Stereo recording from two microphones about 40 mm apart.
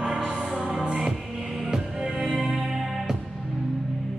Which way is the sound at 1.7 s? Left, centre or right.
Centre.